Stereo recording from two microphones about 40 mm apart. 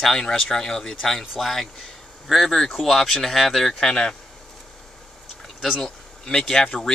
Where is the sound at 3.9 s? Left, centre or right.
Left.